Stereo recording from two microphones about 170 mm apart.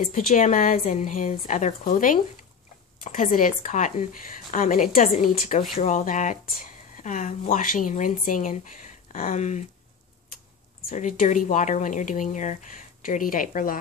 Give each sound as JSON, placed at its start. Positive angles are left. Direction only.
{"t": 0.0, "sound": "speech", "side_deg": 50}
{"t": 10.9, "sound": "speech", "side_deg": 45}